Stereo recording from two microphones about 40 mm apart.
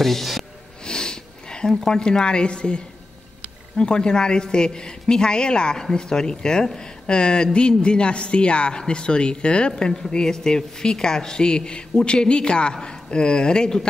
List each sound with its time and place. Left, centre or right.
0.0 s speech: centre
0.8 s sniff: centre
1.9 s speech: centre